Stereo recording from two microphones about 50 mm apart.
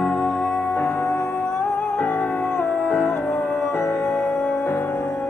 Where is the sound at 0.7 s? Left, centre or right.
Left.